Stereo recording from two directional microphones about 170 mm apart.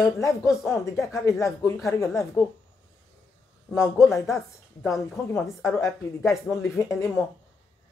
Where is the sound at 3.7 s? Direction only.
15° left (ahead or behind).